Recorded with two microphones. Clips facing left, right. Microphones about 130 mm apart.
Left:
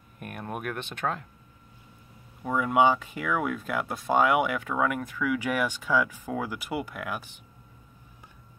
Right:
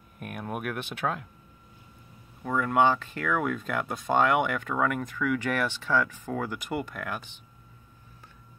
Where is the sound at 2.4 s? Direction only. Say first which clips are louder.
Left 1 dB; 10° left (ahead or behind).